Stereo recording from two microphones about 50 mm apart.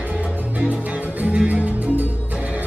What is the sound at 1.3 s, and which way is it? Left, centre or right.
Music, right.